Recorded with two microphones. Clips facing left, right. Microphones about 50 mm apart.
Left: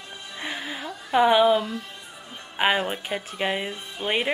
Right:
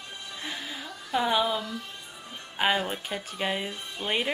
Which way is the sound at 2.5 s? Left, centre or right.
Left.